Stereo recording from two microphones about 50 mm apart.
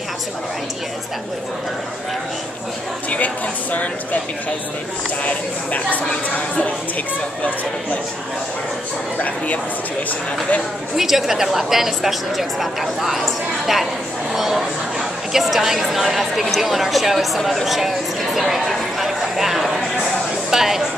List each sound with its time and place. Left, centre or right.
3.7 s speech: left
5.2 s speech: left
11.0 s a woman's voice: centre
20.4 s a sound: centre